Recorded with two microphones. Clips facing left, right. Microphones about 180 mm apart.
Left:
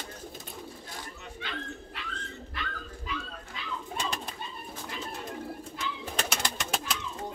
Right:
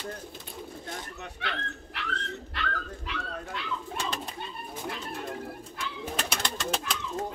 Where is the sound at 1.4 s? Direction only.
75° right (ahead or behind).